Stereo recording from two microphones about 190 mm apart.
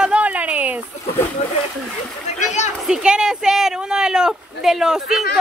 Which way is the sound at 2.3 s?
40° left (ahead or behind).